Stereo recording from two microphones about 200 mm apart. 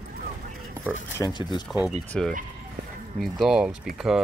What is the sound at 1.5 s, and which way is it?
Speech, centre (ahead or behind).